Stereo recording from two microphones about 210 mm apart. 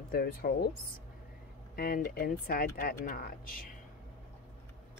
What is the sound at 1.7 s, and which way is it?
Speech, 45° left (ahead or behind).